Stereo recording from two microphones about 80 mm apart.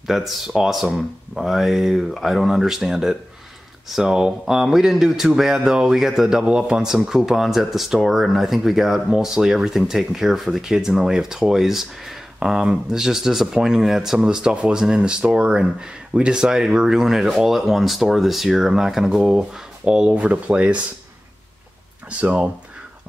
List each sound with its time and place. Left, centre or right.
0.0 s speech: centre
22.2 s speech: centre